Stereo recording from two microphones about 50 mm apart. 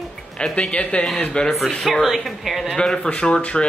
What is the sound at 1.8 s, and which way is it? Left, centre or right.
Speech, centre.